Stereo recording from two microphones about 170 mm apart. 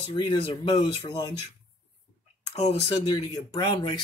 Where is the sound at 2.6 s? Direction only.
35° left (ahead or behind).